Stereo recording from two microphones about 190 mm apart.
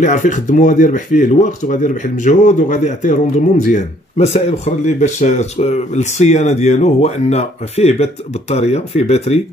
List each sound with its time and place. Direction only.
0.0 s speech: 40° left (ahead or behind)